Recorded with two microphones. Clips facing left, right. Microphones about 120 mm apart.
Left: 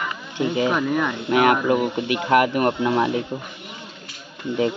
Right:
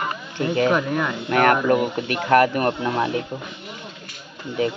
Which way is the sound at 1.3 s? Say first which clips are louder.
Even; 10° left (ahead or behind).